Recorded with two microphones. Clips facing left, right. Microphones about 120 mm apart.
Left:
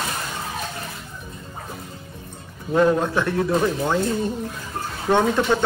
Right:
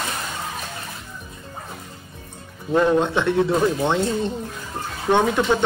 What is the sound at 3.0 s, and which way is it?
Speech, 25° right (ahead or behind).